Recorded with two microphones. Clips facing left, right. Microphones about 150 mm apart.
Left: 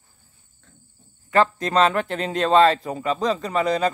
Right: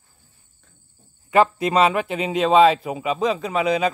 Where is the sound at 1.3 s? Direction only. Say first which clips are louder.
Right 2 dB; 10° right (ahead or behind).